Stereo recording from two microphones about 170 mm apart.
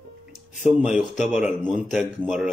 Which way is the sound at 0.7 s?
5° right (ahead or behind).